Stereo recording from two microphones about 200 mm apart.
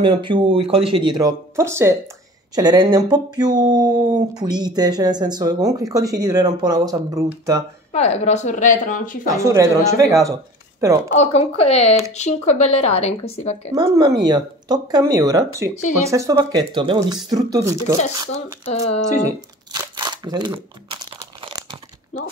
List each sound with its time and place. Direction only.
0.0 s speech: 25° right (ahead or behind)
7.9 s speech: 30° left (ahead or behind)
9.3 s speech: 15° right (ahead or behind)
11.1 s speech: 30° left (ahead or behind)
13.7 s speech: 20° right (ahead or behind)
18.3 s speech: 30° left (ahead or behind)
19.2 s crumpling: 20° right (ahead or behind)